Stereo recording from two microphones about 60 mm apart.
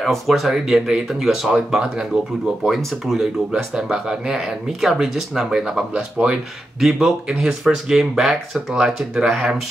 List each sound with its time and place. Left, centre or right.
0.0 s speech: centre
2.6 s speech: centre
3.5 s speech: centre